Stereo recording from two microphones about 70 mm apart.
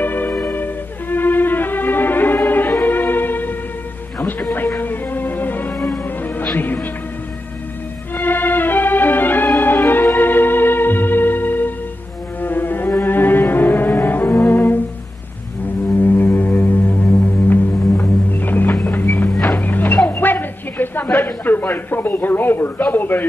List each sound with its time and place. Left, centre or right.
0.0 s music: left
0.5 s violin: left
2.8 s music: left
8.2 s music: left
12.4 s cello: left
16.0 s music: left
19.5 s a sound: left